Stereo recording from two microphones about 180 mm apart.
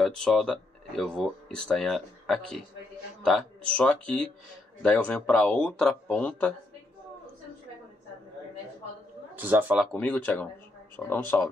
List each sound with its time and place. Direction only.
0.0 s speech: 5° left (ahead or behind)
9.3 s speech: 10° right (ahead or behind)
9.9 s speech: 5° left (ahead or behind)